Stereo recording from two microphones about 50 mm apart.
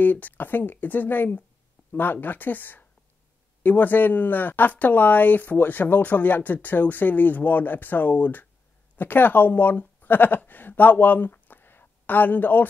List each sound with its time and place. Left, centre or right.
0.0 s speech: left